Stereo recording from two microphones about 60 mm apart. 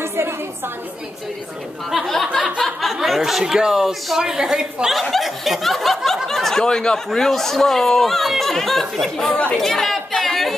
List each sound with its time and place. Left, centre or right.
0.0 s a sound: right
1.9 s speech: centre
2.8 s a sound: centre
3.2 s speech: centre
6.2 s snicker: centre
7.1 s speech: centre
9.3 s speech: left
9.6 s chatter: centre